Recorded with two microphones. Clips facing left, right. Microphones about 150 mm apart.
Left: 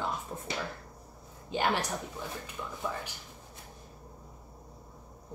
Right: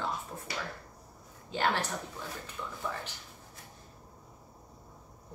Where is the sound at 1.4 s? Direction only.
15° left (ahead or behind).